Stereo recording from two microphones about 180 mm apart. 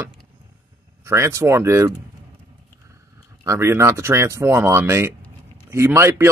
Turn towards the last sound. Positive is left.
turn(degrees=-15)  # may be behind; listen again after turning